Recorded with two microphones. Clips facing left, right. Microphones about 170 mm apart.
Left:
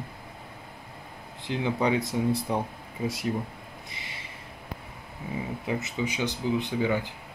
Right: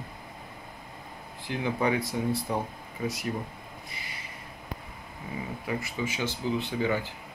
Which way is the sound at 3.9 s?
25° left (ahead or behind).